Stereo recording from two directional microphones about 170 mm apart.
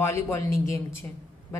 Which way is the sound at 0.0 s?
15° left (ahead or behind).